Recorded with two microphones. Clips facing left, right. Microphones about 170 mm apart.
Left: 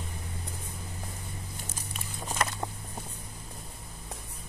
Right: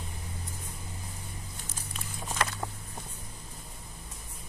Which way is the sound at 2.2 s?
15° left (ahead or behind).